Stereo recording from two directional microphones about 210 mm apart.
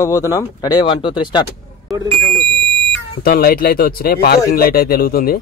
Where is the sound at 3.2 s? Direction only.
45° left (ahead or behind).